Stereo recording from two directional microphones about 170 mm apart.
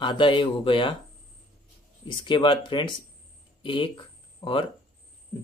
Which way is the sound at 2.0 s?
30° left (ahead or behind).